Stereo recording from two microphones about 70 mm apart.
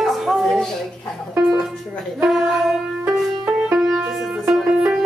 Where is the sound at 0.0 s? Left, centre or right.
Centre.